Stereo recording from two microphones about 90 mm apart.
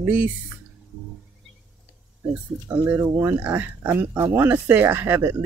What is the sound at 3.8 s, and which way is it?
Speech, 40° right (ahead or behind).